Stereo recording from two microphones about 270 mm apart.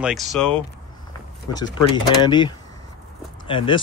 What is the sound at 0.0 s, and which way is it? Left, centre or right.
Speech, centre.